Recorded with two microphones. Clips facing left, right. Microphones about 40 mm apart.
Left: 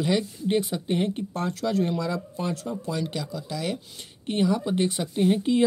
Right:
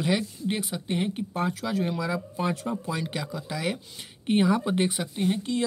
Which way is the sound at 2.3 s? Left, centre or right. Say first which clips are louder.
Right 1 dB; centre.